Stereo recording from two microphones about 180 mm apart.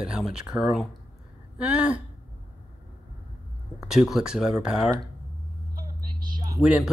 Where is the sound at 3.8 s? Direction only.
5° right (ahead or behind).